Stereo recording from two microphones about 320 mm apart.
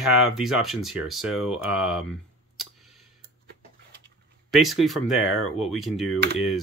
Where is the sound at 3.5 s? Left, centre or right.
Right.